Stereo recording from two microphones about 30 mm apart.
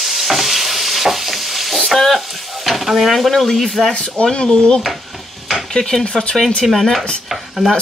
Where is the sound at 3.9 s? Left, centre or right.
Left.